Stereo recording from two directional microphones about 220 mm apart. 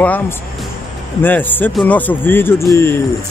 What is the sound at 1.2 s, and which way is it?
Speech, 10° left (ahead or behind).